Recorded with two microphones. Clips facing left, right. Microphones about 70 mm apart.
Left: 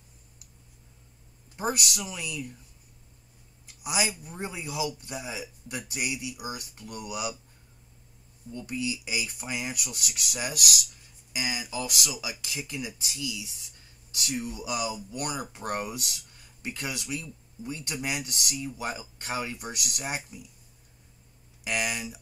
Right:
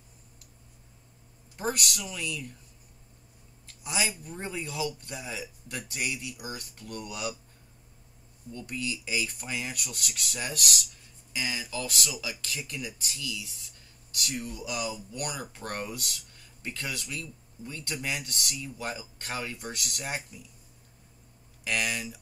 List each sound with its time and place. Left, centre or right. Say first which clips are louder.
1.6 s speech: left 1 dB; centre
3.6 s a sound: left 2 dB; centre
4.2 s speech: even; centre
8.5 s speech: left 3 dB; centre
21.6 s speech: even; centre